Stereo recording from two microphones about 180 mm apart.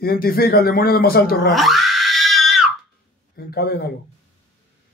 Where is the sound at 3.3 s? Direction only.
60° left (ahead or behind).